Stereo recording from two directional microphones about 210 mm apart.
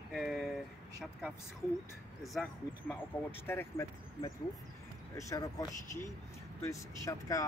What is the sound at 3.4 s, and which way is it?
Speech, 15° left (ahead or behind).